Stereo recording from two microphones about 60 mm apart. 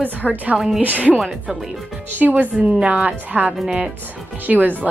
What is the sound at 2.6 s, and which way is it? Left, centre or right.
A woman's voice, centre.